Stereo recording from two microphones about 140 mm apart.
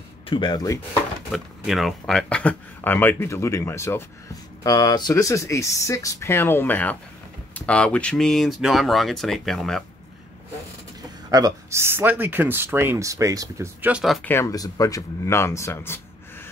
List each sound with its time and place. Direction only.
0.3 s speech: 30° left (ahead or behind)
1.3 s speech: centre (ahead or behind); by 4.0 s 20° left (ahead or behind)
4.6 s speech: 30° left (ahead or behind); by 9.8 s 5° left (ahead or behind)
11.0 s speech: 25° right (ahead or behind)
14.2 s speech: 20° left (ahead or behind)